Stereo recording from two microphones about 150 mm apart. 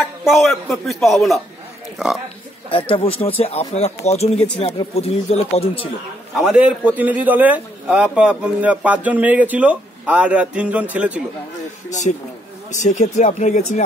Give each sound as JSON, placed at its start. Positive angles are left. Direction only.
{"t": 0.0, "sound": "speech", "side_deg": 0}
{"t": 2.7, "sound": "speech", "side_deg": 40}
{"t": 6.3, "sound": "a man's voice", "side_deg": -5}
{"t": 12.1, "sound": "speech", "side_deg": 50}